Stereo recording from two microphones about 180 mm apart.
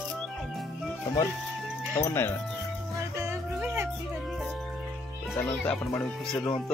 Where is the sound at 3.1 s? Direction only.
15° right (ahead or behind).